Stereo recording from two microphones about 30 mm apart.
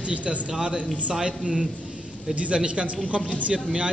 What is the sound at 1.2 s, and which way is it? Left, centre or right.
Speech, right.